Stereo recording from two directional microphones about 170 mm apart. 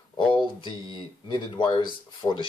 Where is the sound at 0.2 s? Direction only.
30° left (ahead or behind).